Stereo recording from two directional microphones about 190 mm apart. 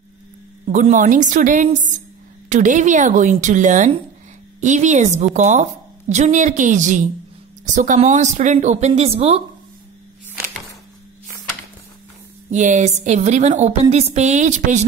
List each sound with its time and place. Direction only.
0.7 s a woman's voice: 40° right (ahead or behind)
12.4 s a woman's voice: 40° right (ahead or behind)